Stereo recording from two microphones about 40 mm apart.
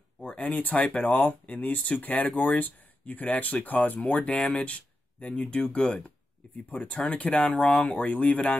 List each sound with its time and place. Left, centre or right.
0.2 s speech: left
7.5 s speech: centre
7.8 s speech: left